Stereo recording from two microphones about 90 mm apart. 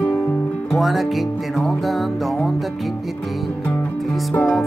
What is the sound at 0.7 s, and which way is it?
Music, centre (ahead or behind).